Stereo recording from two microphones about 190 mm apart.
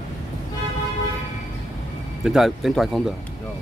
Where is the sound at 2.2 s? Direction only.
Centre (ahead or behind).